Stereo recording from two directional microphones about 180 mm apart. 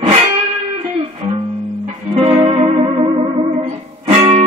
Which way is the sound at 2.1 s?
30° right (ahead or behind).